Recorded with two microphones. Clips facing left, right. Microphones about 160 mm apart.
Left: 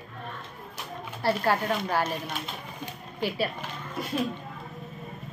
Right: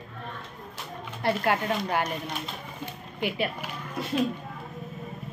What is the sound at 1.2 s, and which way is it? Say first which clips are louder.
Speech: even; 20° right (ahead or behind).